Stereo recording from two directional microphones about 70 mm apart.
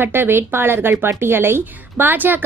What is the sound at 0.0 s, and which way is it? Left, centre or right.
A woman's voice, right.